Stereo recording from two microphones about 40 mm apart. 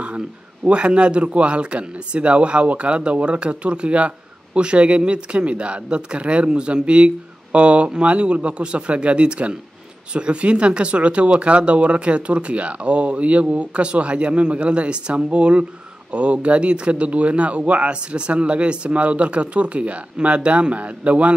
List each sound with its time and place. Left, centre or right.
0.7 s speech: right